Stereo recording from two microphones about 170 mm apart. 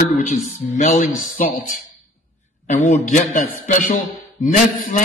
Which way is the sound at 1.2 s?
55° left (ahead or behind).